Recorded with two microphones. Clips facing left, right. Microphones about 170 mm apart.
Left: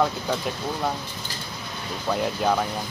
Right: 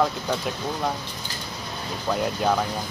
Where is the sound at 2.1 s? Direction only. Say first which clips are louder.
Even; centre (ahead or behind).